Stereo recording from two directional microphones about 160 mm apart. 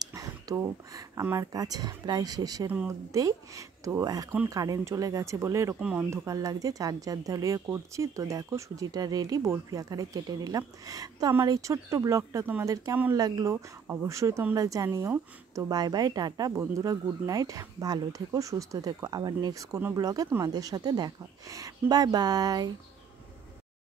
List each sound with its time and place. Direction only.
0.0 s speech: 25° right (ahead or behind)
5.8 s speech: 5° right (ahead or behind)
6.0 s speech: 20° right (ahead or behind)